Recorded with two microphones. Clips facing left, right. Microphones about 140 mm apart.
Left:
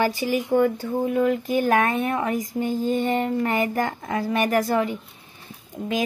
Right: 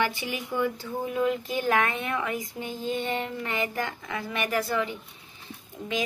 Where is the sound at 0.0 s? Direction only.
40° left (ahead or behind).